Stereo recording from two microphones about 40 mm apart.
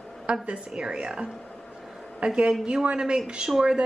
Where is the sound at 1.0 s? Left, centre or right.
Centre.